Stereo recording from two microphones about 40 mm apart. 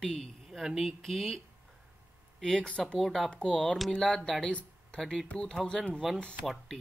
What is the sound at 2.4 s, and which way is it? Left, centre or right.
Speech, centre.